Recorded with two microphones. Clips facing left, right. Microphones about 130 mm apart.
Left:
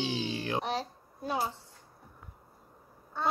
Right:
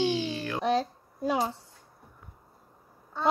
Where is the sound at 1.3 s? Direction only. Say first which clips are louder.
Right 5 dB; 90° right.